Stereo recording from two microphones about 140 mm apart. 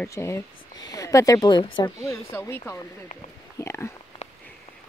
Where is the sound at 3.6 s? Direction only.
20° left (ahead or behind).